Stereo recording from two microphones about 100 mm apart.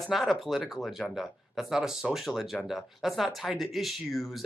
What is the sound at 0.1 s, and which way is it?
Speech, centre (ahead or behind).